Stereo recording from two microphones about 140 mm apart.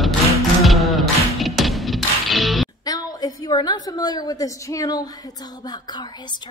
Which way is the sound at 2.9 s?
25° left (ahead or behind).